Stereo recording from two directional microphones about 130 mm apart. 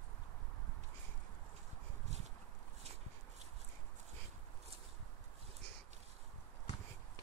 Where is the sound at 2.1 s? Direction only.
60° right (ahead or behind).